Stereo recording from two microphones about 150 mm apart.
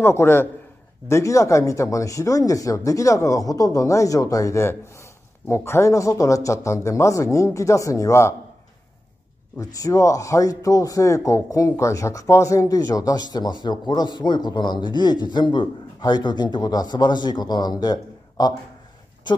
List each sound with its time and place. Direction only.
0.0 s a man's voice: 15° left (ahead or behind)
9.6 s a man's voice: 20° left (ahead or behind)